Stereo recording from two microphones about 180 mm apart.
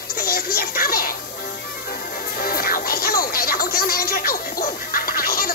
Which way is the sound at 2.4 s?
50° left (ahead or behind).